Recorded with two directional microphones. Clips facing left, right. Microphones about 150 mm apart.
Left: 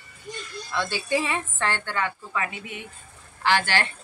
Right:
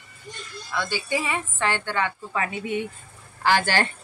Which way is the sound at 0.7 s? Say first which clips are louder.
Left 1 dB; 5° right (ahead or behind).